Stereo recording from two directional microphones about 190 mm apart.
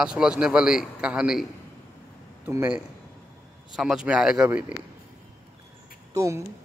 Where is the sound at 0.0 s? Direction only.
5° right (ahead or behind).